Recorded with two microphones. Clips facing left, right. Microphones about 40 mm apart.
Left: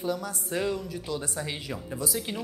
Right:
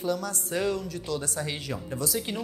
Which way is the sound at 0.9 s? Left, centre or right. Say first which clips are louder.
Right 1 dB; centre.